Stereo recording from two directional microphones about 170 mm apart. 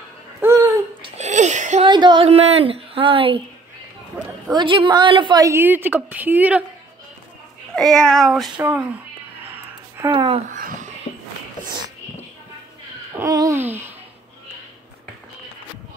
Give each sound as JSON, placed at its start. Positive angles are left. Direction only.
{"t": 0.4, "sound": "babbling", "side_deg": -15}
{"t": 1.0, "sound": "a sound", "side_deg": -40}
{"t": 1.9, "sound": "speech", "side_deg": -25}
{"t": 4.5, "sound": "a woman's voice", "side_deg": -30}
{"t": 7.7, "sound": "a child's voice", "side_deg": 5}
{"t": 10.1, "sound": "speech", "side_deg": -30}
{"t": 10.5, "sound": "speech", "side_deg": -50}
{"t": 13.2, "sound": "a sound", "side_deg": -20}